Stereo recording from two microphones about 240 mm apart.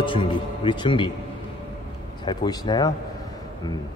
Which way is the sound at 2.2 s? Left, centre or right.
Centre.